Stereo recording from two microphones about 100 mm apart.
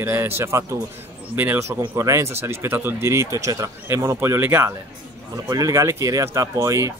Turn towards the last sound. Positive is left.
turn(degrees=-30)  # may be behind; listen again after turning